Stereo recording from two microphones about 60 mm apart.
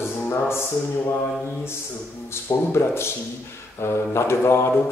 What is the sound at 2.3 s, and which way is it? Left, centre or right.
A man's voice, left.